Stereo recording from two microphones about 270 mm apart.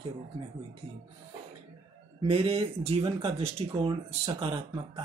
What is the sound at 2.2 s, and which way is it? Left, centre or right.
Speech, centre.